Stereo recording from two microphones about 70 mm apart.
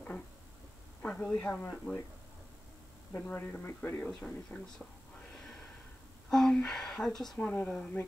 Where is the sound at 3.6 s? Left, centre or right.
Left.